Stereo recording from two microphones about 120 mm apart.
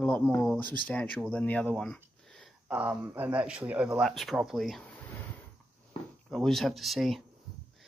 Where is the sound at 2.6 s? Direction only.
15° right (ahead or behind).